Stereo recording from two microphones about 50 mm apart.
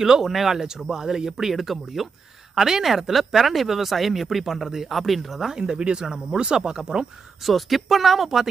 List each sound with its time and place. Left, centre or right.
0.0 s speech: centre